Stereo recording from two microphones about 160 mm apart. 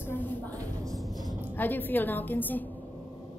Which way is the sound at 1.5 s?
10° left (ahead or behind).